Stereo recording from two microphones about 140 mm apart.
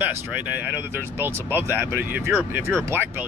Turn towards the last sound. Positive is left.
turn(degrees=-15)  # may be behind; listen again after turning